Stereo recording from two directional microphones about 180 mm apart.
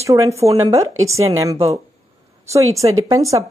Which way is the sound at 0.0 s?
15° right (ahead or behind).